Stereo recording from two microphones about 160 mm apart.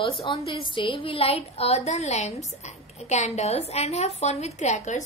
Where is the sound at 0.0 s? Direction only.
35° left (ahead or behind).